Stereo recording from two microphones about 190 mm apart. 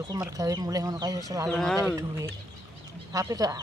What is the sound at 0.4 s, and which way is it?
Speech, 20° right (ahead or behind).